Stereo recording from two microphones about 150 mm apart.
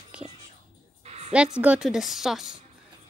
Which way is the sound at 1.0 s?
45° right (ahead or behind).